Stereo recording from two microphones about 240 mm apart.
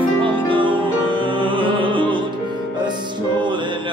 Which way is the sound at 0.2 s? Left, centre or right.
Right.